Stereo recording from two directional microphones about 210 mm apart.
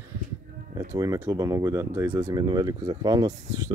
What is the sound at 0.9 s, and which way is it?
Speech, 15° right (ahead or behind).